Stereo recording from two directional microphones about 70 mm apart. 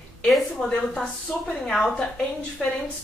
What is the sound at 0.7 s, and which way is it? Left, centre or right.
A woman's voice, centre.